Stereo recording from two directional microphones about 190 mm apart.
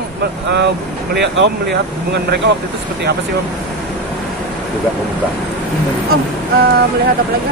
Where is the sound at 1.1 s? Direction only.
65° right (ahead or behind).